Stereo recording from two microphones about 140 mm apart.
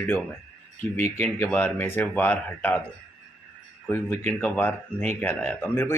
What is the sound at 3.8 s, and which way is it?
Speech, 15° left (ahead or behind).